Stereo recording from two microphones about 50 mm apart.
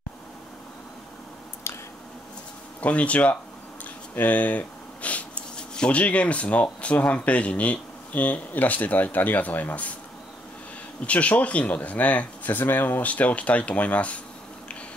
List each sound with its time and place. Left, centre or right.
2.8 s speech: left
4.1 s a sound: left
5.8 s speech: left
11.1 s speech: left